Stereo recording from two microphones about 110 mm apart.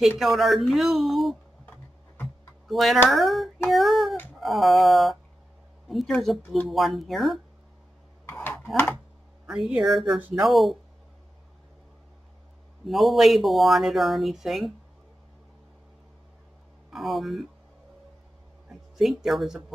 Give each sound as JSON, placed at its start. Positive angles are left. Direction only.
{"t": 0.2, "sound": "speech", "side_deg": 0}
{"t": 2.7, "sound": "speech", "side_deg": 0}
{"t": 8.3, "sound": "a sound", "side_deg": 20}
{"t": 9.5, "sound": "speech", "side_deg": -5}
{"t": 12.8, "sound": "speech", "side_deg": 0}
{"t": 16.9, "sound": "speech", "side_deg": 0}
{"t": 18.7, "sound": "speech", "side_deg": 0}